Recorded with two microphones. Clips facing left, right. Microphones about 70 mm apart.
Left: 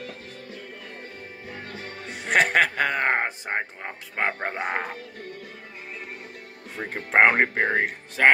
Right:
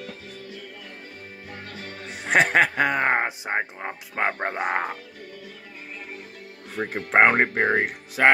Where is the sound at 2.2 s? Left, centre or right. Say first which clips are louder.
Right 1 dB; centre.